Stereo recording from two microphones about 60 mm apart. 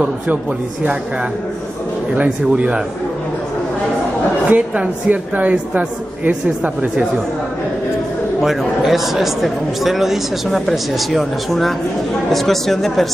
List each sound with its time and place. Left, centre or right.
2.1 s a woman's voice: right
4.5 s a woman's voice: right
8.4 s a man's voice: centre